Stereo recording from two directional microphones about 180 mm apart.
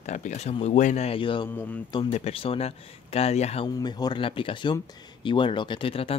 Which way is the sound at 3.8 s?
25° left (ahead or behind).